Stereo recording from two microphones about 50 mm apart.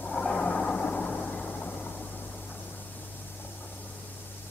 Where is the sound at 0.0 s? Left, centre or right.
Centre.